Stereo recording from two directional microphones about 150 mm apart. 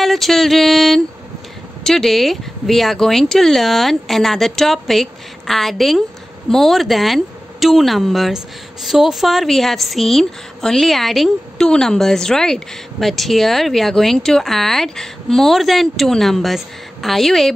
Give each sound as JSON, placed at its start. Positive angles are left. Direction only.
{"t": 0.0, "sound": "a woman's voice", "side_deg": 0}